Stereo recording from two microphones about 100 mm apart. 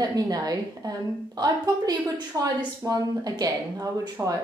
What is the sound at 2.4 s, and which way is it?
A woman's voice, 35° right (ahead or behind).